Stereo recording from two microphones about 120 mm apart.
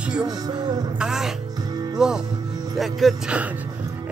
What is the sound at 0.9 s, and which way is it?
Speech, 5° right (ahead or behind).